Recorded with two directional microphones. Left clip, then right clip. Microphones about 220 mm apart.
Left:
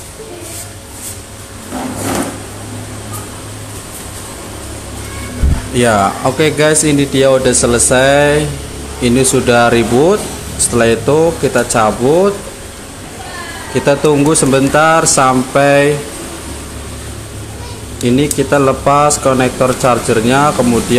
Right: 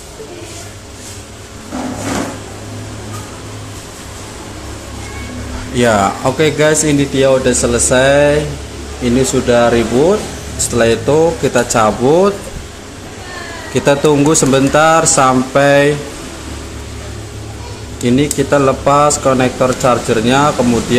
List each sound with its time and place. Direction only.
5.8 s speech: 5° left (ahead or behind)
10.8 s speech: 10° left (ahead or behind)
13.7 s speech: centre (ahead or behind)
18.0 s speech: 5° left (ahead or behind)